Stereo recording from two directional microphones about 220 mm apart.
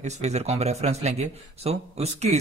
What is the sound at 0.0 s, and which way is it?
A man's voice, 30° right (ahead or behind).